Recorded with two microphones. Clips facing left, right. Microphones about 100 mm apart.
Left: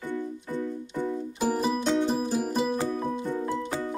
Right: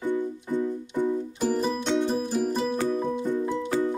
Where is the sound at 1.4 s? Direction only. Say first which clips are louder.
Left 2 dB; 10° left (ahead or behind).